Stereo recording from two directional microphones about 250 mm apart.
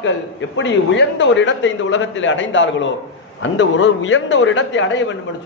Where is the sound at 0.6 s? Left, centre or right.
Left.